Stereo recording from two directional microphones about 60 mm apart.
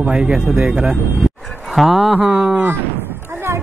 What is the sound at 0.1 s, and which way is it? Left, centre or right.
Speech, centre.